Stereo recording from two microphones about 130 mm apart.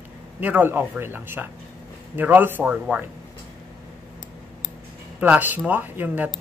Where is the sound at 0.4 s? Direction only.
15° right (ahead or behind).